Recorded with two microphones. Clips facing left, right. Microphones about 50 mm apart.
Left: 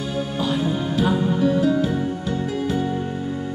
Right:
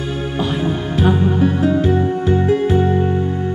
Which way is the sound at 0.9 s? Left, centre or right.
Right.